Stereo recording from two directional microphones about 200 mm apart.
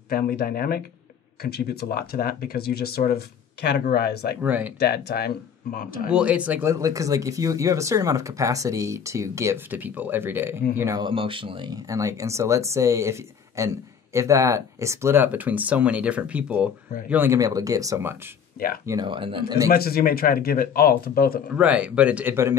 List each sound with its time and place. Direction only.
0.1 s speech: 50° left (ahead or behind)
4.4 s speech: 10° right (ahead or behind)
4.7 s speech: 55° left (ahead or behind)
6.0 s speech: 5° right (ahead or behind); by 19.7 s 20° right (ahead or behind)
19.7 s speech: 50° left (ahead or behind)
21.5 s speech: 5° right (ahead or behind)